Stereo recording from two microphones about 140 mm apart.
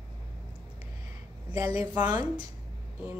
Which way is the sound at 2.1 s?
30° right (ahead or behind).